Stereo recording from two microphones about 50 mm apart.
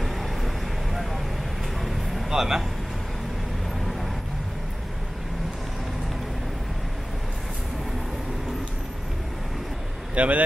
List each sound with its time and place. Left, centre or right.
0.0 s vehicle: centre
1.9 s vehicle: centre
10.1 s speech: right